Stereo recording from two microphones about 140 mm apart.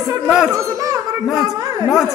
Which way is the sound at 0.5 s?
25° right (ahead or behind).